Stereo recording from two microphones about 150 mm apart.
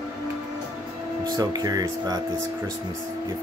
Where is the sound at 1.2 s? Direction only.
25° right (ahead or behind).